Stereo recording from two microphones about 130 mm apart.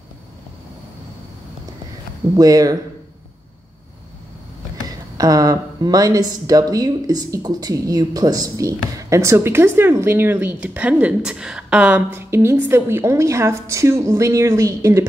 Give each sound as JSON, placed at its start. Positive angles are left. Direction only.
{"t": 2.3, "sound": "speech", "side_deg": -30}
{"t": 4.8, "sound": "speech", "side_deg": -30}
{"t": 12.1, "sound": "speech", "side_deg": -20}